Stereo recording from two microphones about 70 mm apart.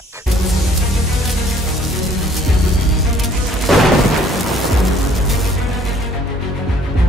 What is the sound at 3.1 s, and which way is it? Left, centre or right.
Music, centre.